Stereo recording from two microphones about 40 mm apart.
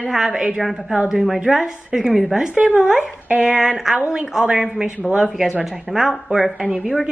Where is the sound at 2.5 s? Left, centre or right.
Right.